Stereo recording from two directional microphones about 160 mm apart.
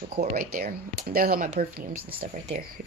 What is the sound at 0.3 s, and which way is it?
Speech, 55° right (ahead or behind).